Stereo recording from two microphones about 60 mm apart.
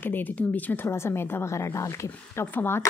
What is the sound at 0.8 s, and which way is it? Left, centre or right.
A woman's voice, left.